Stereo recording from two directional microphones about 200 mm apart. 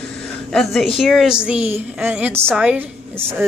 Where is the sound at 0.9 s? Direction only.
Centre (ahead or behind).